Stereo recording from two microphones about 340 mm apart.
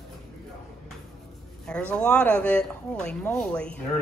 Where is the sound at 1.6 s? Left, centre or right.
Centre.